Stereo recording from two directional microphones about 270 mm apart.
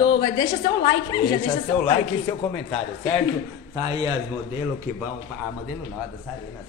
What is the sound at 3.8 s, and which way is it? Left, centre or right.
Speech, centre.